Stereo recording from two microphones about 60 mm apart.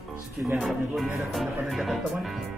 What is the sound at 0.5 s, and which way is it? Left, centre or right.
Speech, centre.